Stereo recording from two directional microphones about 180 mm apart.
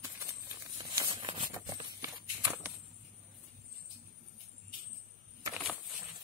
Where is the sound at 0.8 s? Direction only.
25° right (ahead or behind).